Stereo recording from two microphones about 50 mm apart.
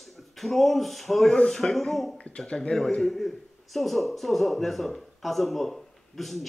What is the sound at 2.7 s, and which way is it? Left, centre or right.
A man's voice, centre.